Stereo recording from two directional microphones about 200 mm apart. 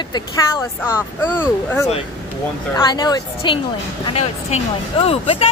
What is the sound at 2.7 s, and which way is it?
Speech, 20° left (ahead or behind).